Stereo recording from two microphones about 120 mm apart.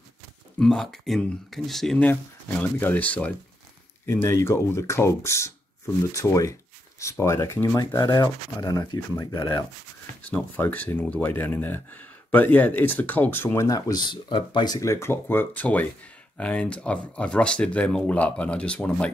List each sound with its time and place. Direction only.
0.6 s speech: 5° left (ahead or behind); by 9.7 s 30° left (ahead or behind)
10.2 s speech: 15° left (ahead or behind)
13.7 s speech: 30° left (ahead or behind); by 19.0 s 10° left (ahead or behind)